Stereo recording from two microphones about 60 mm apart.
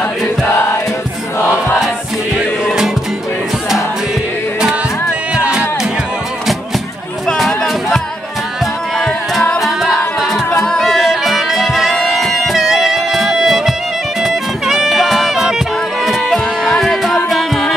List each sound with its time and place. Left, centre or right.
5.3 s music: centre
7.3 s music: centre
9.6 s music: centre